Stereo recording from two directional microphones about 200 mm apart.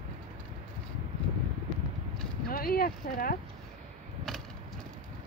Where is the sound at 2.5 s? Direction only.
45° left (ahead or behind).